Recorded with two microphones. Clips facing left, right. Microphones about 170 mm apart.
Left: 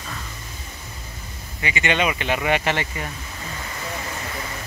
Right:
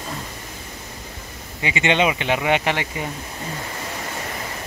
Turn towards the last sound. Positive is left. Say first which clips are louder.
# right 1 dB
turn(degrees=-15)  # may be behind; listen again after turning